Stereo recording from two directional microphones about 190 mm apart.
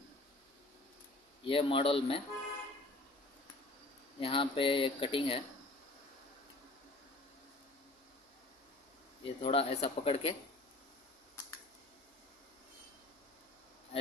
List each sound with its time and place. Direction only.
1.4 s speech: 30° left (ahead or behind)
4.2 s speech: 30° left (ahead or behind)
9.2 s speech: 30° left (ahead or behind)